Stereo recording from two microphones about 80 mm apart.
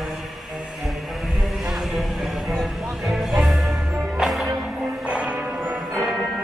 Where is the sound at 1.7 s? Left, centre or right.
Centre.